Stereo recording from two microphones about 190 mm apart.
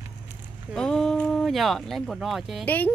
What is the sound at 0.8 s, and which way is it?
Speech, 5° left (ahead or behind).